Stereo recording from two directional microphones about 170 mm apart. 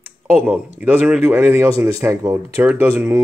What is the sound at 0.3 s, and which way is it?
A man's voice, 10° right (ahead or behind).